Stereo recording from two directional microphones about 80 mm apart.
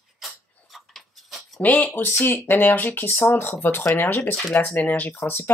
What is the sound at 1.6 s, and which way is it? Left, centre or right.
Speech, left.